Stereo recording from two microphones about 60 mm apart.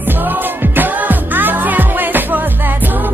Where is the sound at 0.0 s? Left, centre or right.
Right.